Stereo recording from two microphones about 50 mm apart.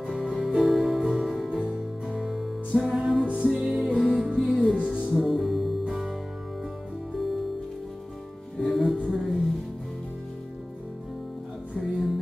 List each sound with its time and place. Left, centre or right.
0.0 s music: centre
0.6 s music: centre
1.6 s music: centre
3.3 s music: right
3.6 s music: centre
4.3 s music: centre
5.1 s music: centre
8.5 s music: centre
11.7 s music: centre